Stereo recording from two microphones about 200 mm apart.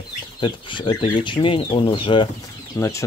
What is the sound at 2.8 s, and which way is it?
Speech, 15° left (ahead or behind).